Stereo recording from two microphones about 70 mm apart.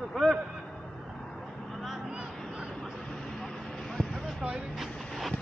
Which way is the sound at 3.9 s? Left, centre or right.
Centre.